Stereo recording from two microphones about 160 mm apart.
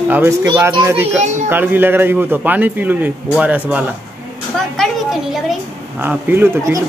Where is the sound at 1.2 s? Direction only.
50° right (ahead or behind).